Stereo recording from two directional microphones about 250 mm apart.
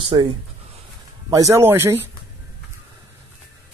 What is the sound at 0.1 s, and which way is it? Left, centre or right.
Speech, centre.